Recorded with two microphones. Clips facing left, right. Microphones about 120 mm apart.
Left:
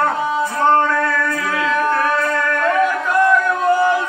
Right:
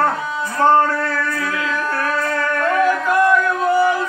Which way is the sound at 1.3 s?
30° left (ahead or behind).